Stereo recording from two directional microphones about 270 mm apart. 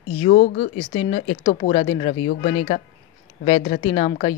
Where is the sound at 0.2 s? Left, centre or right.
Left.